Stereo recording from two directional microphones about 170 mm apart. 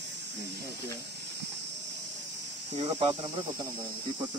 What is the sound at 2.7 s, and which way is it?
Speech, 40° right (ahead or behind).